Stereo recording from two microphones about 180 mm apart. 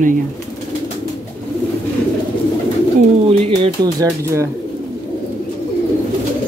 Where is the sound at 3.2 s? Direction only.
30° right (ahead or behind).